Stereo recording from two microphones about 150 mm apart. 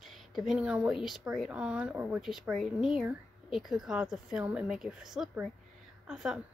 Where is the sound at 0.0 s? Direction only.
Centre (ahead or behind).